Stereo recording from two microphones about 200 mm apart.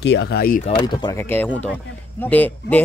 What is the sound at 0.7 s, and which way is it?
Speech, 20° left (ahead or behind).